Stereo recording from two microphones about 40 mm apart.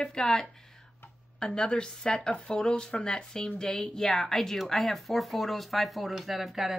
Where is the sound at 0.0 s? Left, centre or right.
Centre.